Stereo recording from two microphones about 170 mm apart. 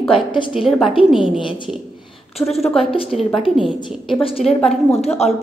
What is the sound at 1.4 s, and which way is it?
Speech, 30° left (ahead or behind).